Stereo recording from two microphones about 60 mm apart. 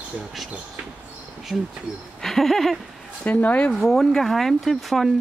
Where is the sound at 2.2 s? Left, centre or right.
Centre.